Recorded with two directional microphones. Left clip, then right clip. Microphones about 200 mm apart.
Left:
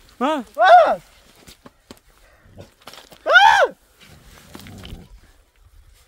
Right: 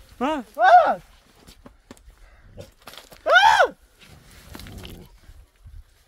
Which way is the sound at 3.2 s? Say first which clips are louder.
Left 3 dB; 15° left (ahead or behind).